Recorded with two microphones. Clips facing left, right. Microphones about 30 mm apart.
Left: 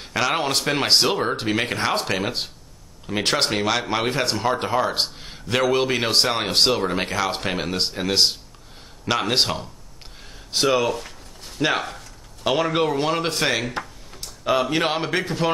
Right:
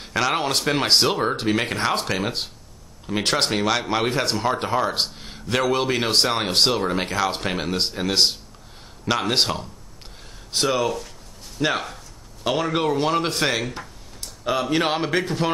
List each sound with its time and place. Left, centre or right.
0.0 s speech: centre
10.9 s a sound: left
12.4 s speech: centre